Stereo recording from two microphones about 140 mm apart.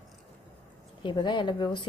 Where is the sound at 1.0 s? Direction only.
35° left (ahead or behind).